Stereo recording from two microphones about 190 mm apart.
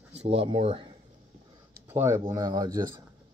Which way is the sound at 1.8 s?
15° right (ahead or behind).